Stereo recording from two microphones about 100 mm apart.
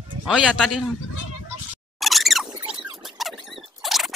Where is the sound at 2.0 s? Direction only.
Centre (ahead or behind).